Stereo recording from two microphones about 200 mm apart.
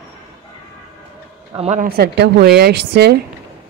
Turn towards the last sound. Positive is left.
turn(degrees=-55)  # may be behind; listen again after turning